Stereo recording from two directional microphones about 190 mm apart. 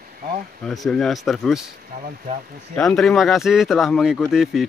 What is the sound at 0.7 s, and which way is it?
Speech, centre (ahead or behind).